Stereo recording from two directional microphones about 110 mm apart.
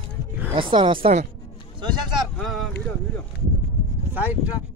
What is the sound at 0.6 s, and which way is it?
Speech, 50° right (ahead or behind).